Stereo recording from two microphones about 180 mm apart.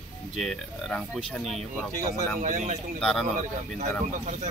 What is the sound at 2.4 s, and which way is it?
Speech, 45° right (ahead or behind).